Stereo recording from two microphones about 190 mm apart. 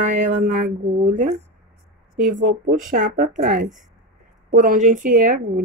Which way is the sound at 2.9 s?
50° right (ahead or behind).